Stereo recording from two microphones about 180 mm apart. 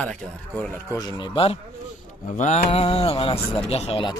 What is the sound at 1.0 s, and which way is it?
Speech, 25° left (ahead or behind).